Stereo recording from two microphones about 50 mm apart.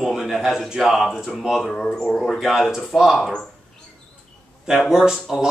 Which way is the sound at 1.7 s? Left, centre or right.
Centre.